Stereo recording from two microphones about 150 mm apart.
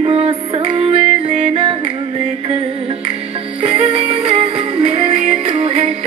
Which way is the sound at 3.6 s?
40° right (ahead or behind).